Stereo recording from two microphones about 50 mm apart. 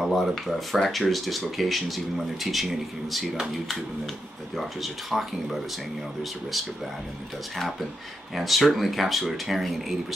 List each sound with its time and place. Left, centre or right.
0.0 s speech: centre
8.4 s speech: centre